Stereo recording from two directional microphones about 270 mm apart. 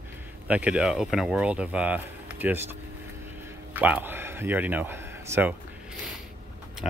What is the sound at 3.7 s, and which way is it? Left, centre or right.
A man's voice, centre.